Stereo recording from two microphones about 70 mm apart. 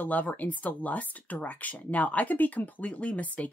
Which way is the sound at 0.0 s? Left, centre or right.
Left.